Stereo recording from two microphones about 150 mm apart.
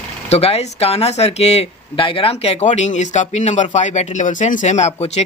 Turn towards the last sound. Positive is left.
turn(degrees=45)  # may be behind; listen again after turning